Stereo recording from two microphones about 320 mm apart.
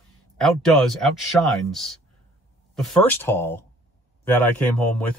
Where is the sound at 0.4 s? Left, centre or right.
Centre.